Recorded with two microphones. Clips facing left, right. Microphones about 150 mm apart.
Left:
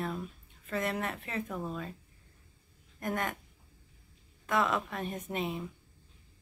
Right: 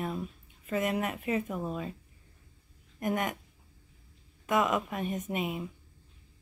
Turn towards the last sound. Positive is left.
turn(degrees=-10)  # may be behind; listen again after turning